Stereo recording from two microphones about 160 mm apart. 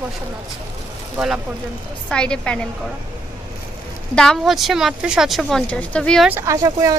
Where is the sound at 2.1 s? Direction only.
5° left (ahead or behind).